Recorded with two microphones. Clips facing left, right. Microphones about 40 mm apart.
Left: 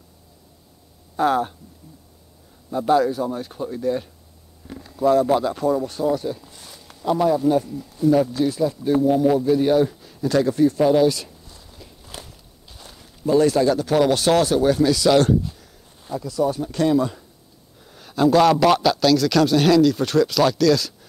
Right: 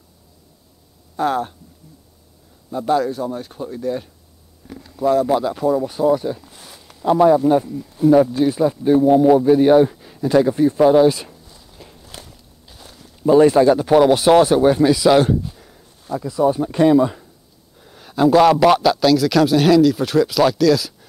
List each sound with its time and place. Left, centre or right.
1.1 s speech: centre
2.7 s a man's voice: centre
6.4 s a sound: centre
7.0 s speech: centre
11.4 s a sound: centre
12.0 s walk: centre
13.2 s speech: right
17.7 s a man's voice: centre